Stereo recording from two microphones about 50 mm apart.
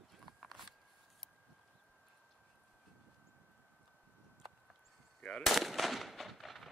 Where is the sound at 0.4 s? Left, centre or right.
Centre.